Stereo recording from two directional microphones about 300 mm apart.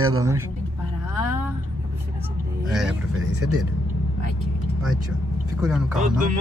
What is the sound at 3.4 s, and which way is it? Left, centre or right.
Speech, right.